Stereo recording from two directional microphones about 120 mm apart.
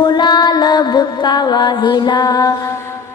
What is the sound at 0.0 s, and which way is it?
Music, 40° left (ahead or behind).